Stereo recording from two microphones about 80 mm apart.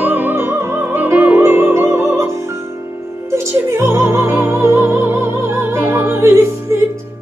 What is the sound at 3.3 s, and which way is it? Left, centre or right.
Music, right.